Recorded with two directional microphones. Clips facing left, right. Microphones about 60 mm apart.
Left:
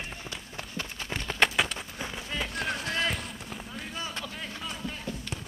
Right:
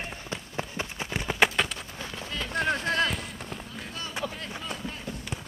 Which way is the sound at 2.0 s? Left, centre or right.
Centre.